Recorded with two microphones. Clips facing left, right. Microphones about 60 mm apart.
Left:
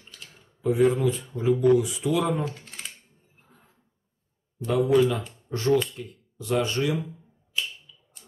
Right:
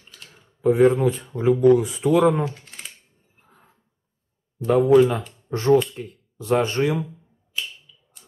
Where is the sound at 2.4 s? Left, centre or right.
Centre.